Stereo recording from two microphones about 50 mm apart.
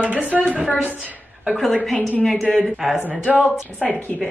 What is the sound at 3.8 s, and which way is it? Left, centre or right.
Speech, left.